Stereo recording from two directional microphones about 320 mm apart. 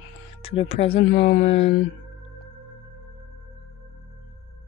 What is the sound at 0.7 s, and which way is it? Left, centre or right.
Speech, centre.